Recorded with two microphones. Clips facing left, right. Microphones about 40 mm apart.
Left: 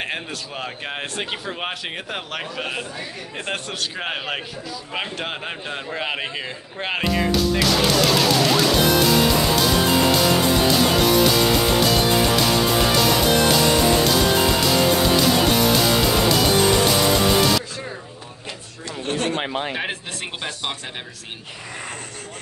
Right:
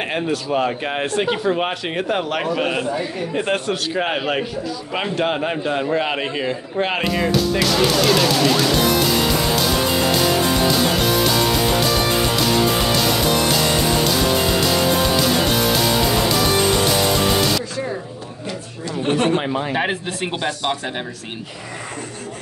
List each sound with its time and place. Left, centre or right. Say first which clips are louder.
0.0 s a man's voice: right 6 dB; centre
5.7 s music: right 6 dB; centre
19.0 s a sound: right 6 dB; right
19.7 s speech: right 6 dB; centre